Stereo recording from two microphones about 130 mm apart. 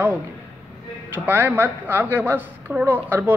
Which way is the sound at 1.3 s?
15° right (ahead or behind).